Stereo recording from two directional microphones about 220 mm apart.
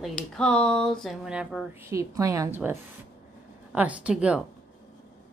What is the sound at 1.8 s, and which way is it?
A woman's voice, 15° right (ahead or behind).